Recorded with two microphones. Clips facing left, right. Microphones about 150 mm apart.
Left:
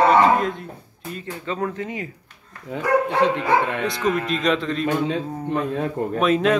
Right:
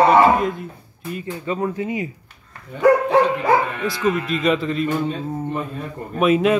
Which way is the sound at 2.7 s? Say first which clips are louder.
Right 11 dB; 90° left.